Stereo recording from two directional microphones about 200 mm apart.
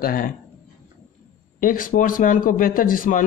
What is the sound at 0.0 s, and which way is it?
Speech, 45° left (ahead or behind).